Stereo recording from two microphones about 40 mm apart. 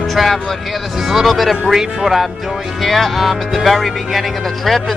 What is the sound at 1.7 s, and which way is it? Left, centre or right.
Speech, centre.